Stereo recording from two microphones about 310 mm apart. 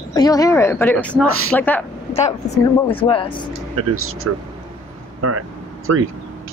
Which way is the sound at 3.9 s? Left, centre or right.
Right.